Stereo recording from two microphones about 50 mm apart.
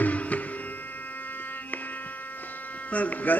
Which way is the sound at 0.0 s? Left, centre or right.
Left.